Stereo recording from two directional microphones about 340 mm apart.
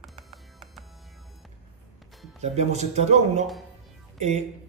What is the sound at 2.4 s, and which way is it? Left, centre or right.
A man's voice, centre.